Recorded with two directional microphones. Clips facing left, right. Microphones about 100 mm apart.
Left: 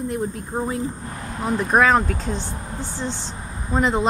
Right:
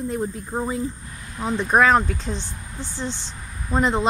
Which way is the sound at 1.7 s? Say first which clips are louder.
Even; centre (ahead or behind).